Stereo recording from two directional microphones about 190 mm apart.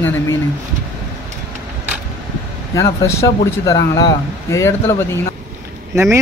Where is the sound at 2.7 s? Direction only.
15° left (ahead or behind).